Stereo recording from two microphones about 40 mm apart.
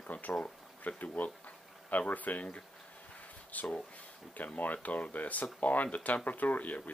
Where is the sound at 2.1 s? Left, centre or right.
Left.